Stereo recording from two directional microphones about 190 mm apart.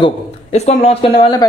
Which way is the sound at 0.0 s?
35° left (ahead or behind).